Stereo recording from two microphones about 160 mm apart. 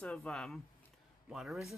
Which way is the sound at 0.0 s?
5° left (ahead or behind).